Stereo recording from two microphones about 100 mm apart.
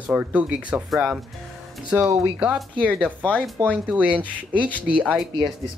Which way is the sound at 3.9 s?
15° right (ahead or behind).